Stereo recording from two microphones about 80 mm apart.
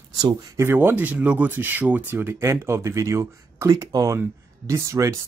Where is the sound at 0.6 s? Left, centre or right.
Right.